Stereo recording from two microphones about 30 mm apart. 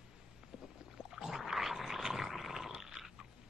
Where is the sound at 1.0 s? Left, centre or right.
Centre.